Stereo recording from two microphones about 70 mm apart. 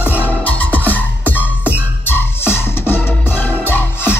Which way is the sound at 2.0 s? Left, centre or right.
Left.